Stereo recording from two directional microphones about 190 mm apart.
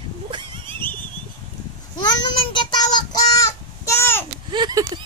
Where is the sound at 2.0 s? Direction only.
25° left (ahead or behind).